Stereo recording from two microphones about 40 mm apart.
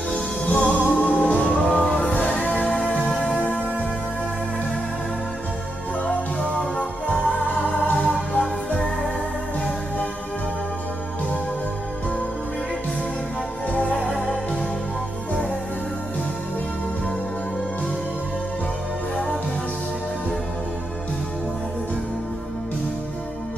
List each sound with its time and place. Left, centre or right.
0.1 s music: left
2.1 s music: left
2.8 s music: centre
3.3 s music: left
6.0 s music: left
7.9 s music: left
13.7 s music: left
14.2 s music: centre